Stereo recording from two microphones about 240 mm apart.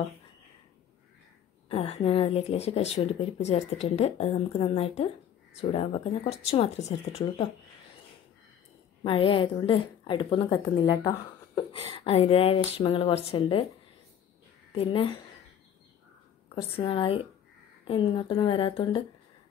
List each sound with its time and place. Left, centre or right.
1.7 s a woman's voice: left
9.0 s a woman's voice: left
14.7 s a woman's voice: left
16.7 s a woman's voice: left